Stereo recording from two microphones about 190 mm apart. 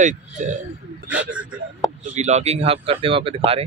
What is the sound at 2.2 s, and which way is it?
Speech, 35° right (ahead or behind).